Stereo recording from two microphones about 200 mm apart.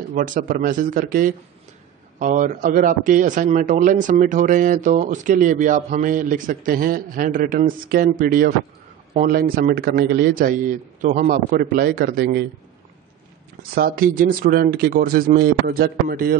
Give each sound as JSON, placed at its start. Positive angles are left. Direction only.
{"t": 0.1, "sound": "a man's voice", "side_deg": -40}
{"t": 13.6, "sound": "a man's voice", "side_deg": -45}